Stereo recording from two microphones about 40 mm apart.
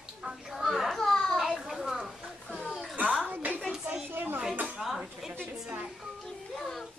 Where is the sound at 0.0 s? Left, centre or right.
Centre.